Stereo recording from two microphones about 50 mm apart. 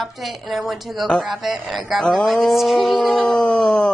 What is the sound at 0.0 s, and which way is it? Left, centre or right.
A woman's voice, centre.